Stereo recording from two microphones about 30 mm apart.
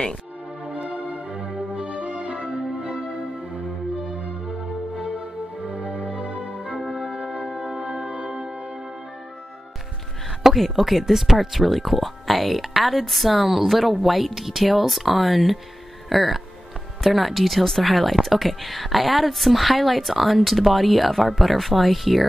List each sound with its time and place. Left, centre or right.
0.7 s music: right
2.5 s music: right
5.7 s music: right
7.5 s music: centre
8.0 s music: right
10.5 s speech: centre